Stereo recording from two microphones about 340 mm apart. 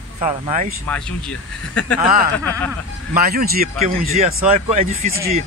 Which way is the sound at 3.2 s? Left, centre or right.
Right.